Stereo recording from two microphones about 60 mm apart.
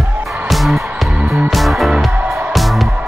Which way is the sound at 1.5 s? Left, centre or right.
Centre.